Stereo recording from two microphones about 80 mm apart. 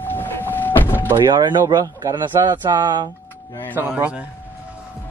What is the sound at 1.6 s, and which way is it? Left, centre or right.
Speech, right.